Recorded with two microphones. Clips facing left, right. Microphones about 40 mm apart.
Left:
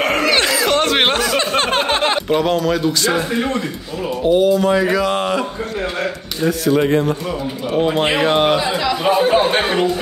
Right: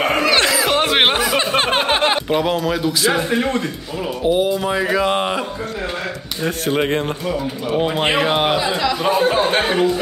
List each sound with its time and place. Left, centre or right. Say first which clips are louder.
0.0 s a sound: even; centre
4.2 s speech: left 4 dB; centre
6.8 s speech: left 3 dB; right
7.7 s a man's voice: left 1 dB; centre